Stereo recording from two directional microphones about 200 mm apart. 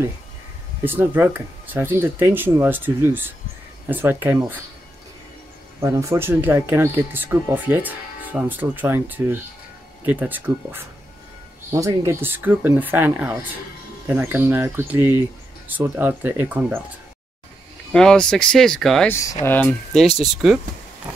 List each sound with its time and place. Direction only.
0.8 s speech: 10° right (ahead or behind)
5.8 s speech: 15° right (ahead or behind)
17.9 s speech: 5° left (ahead or behind)
19.1 s speech: 10° left (ahead or behind)